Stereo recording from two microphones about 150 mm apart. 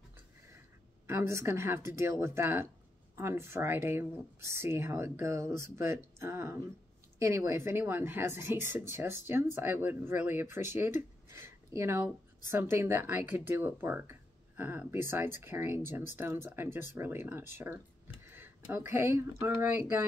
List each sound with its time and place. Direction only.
1.0 s speech: 20° right (ahead or behind)